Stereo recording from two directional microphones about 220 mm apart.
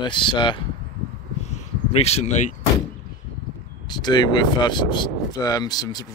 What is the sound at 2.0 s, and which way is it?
Speech, 30° left (ahead or behind).